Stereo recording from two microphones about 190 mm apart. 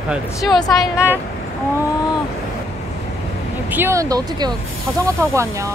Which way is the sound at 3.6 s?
10° right (ahead or behind).